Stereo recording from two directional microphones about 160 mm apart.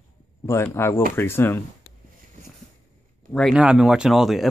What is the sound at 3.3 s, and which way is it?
Speech, centre (ahead or behind).